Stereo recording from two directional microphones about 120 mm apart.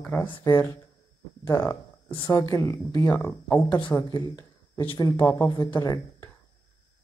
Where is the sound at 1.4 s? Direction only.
25° left (ahead or behind).